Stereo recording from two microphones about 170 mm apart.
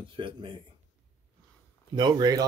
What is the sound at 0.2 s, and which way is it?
Speech, 30° right (ahead or behind).